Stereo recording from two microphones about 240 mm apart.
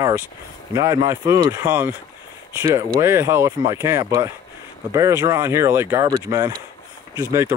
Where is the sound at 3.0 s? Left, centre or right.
Centre.